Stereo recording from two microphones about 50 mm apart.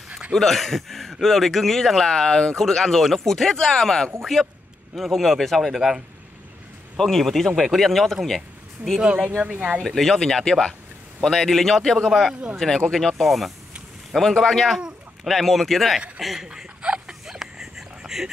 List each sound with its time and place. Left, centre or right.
0.3 s a man's voice: centre
7.0 s a man's voice: centre
9.0 s speech: right
9.8 s a man's voice: centre
12.1 s a man's voice: centre
12.5 s a man's voice: centre
16.4 s chuckle: centre
17.3 s a sound: centre